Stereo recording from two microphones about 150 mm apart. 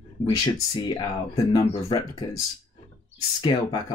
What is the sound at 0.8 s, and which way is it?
Speech, 25° left (ahead or behind).